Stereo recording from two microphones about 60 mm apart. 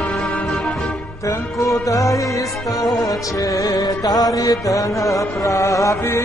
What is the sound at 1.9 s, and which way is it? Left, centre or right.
Music, left.